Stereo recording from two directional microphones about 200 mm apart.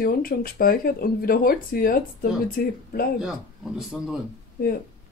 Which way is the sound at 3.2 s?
5° right (ahead or behind).